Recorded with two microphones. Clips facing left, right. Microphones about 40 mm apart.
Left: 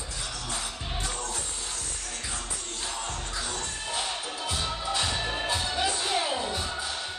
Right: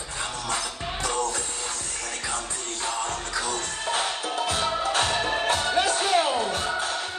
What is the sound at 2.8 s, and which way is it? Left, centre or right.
Music, right.